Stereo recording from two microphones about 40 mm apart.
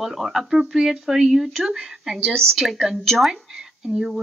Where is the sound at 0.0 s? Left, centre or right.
Centre.